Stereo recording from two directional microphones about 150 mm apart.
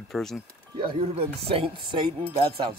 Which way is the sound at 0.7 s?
35° right (ahead or behind).